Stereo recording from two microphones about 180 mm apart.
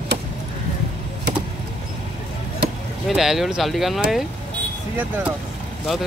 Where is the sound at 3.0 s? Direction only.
Centre (ahead or behind).